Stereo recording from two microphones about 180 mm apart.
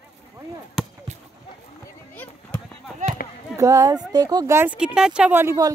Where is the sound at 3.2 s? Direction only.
55° left (ahead or behind).